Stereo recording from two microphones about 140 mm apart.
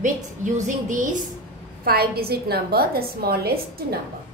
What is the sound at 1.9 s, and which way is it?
A woman's voice, 90° right.